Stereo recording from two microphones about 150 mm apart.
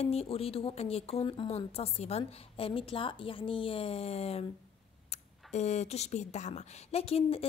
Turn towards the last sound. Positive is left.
turn(degrees=40)  # may be behind; listen again after turning